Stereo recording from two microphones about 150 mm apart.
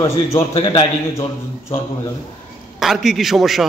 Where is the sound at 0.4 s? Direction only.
40° left (ahead or behind).